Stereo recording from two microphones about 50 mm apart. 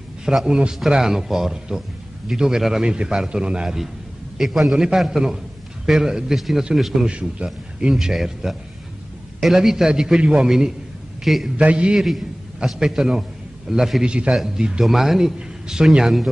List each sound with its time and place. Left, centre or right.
0.2 s a man's voice: centre
7.1 s a man's voice: right
7.9 s a man's voice: centre
11.2 s a man's voice: centre
11.5 s a man's voice: right; by 14.0 s centre
14.0 s a man's voice: right
14.3 s a man's voice: centre